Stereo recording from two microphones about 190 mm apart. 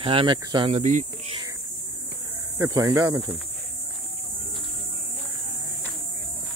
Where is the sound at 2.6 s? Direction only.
15° right (ahead or behind).